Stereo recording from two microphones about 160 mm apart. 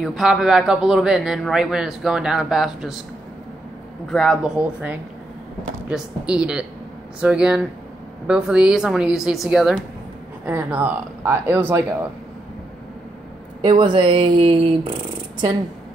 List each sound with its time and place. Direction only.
0.0 s speech: centre (ahead or behind)
4.1 s speech: centre (ahead or behind)
13.7 s speech: 30° right (ahead or behind)